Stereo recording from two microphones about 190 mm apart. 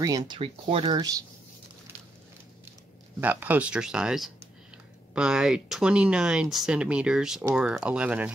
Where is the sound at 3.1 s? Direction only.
10° right (ahead or behind).